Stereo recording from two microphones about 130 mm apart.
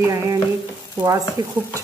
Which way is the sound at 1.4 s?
25° right (ahead or behind).